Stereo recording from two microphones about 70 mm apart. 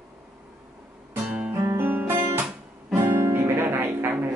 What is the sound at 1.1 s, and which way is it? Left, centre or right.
Guitar, right.